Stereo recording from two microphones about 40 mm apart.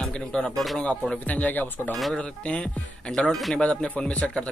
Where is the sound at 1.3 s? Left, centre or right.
Left.